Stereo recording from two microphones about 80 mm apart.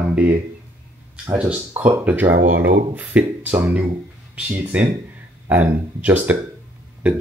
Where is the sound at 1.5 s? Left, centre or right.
Centre.